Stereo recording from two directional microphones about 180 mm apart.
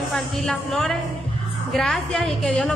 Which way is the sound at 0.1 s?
Centre (ahead or behind).